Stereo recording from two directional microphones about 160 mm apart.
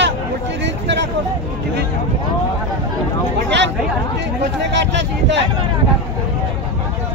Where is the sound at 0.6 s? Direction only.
90° right.